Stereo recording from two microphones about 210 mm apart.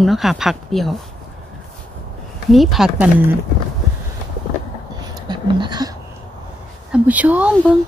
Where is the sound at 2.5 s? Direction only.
Centre (ahead or behind).